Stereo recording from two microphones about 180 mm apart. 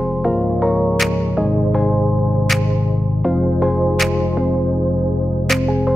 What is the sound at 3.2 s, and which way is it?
Music, centre (ahead or behind).